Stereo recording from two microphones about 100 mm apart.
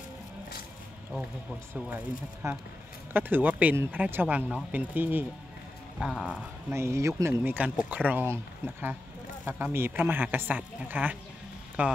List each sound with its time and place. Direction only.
2.4 s speech: 30° right (ahead or behind)
3.7 s speech: 25° right (ahead or behind)
4.0 s speech: 15° right (ahead or behind)
5.9 s speech: 5° right (ahead or behind)
6.7 s speech: 25° right (ahead or behind)
7.4 s speech: 15° right (ahead or behind)